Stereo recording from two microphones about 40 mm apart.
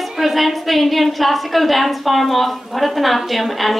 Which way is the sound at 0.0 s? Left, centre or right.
Centre.